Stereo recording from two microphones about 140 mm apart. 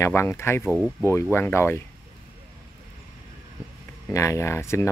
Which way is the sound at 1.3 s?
15° left (ahead or behind).